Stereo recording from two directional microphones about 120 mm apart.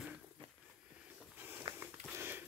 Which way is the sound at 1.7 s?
45° right (ahead or behind).